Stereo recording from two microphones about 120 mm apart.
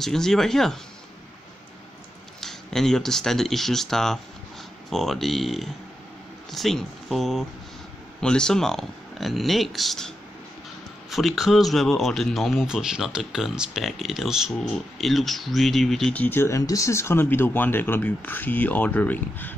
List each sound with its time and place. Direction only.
0.0 s speech: 5° left (ahead or behind)
2.4 s speech: 5° left (ahead or behind)
16.2 s speech: 20° left (ahead or behind)